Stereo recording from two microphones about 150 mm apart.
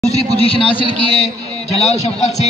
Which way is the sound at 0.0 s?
45° left (ahead or behind).